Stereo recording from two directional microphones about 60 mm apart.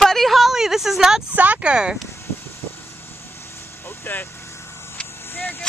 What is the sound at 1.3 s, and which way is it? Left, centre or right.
Speech, right.